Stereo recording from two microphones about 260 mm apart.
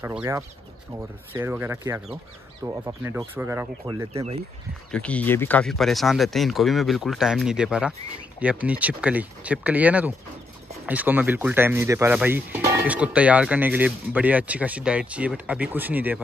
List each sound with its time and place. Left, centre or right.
0.0 s speech: centre
4.1 s speech: right
4.9 s speech: centre